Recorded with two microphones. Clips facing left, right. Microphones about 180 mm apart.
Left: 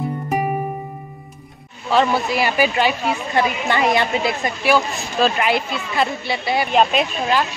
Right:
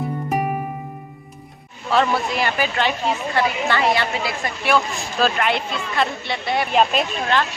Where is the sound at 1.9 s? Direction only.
Centre (ahead or behind); by 4.4 s 20° left (ahead or behind).